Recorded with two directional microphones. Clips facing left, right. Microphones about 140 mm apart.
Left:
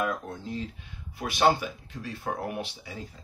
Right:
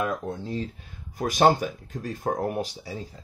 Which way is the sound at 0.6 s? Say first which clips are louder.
Right 4 dB; 45° right (ahead or behind).